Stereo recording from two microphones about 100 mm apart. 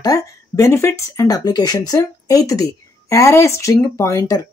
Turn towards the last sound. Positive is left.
turn(degrees=30)  # may be behind; listen again after turning